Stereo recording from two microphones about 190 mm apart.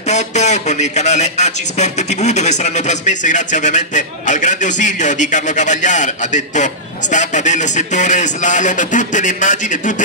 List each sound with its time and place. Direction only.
0.1 s a man's voice: 35° left (ahead or behind)